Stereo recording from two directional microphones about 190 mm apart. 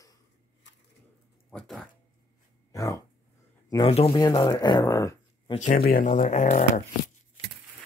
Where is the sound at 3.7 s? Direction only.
30° left (ahead or behind).